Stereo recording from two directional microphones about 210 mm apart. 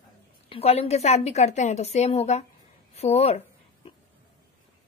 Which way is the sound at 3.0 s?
30° left (ahead or behind).